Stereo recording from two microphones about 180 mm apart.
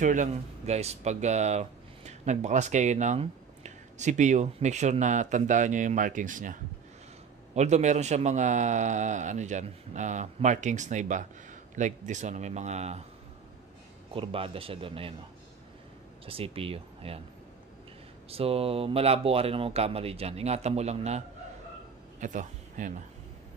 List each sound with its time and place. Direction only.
0.0 s speech: 45° right (ahead or behind)
14.1 s speech: 30° right (ahead or behind)
16.3 s speech: 30° right (ahead or behind)
18.3 s speech: 30° right (ahead or behind)
22.2 s a man's voice: 45° right (ahead or behind)